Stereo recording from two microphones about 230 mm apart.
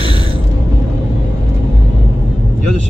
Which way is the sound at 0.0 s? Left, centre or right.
Right.